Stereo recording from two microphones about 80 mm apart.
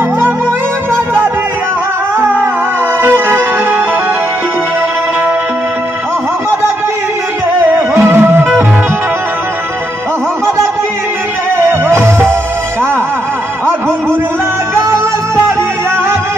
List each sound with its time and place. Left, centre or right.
3.0 s music: right
7.7 s music: right
11.5 s music: right